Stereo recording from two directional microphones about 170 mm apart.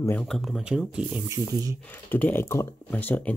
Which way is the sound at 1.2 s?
20° right (ahead or behind).